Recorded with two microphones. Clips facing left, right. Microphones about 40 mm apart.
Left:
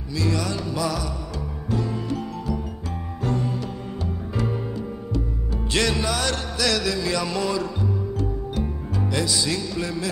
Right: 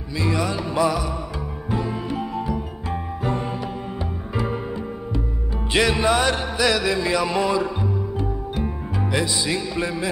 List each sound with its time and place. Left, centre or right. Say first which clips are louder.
0.2 s music: right 2 dB; right